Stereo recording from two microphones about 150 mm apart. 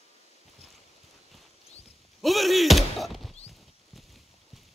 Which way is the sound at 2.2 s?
Centre (ahead or behind).